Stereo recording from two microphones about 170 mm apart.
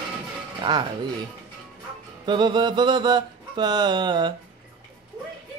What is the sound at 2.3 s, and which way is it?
Mantra, 25° right (ahead or behind).